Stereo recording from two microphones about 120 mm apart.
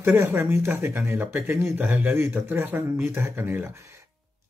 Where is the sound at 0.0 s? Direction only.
20° right (ahead or behind).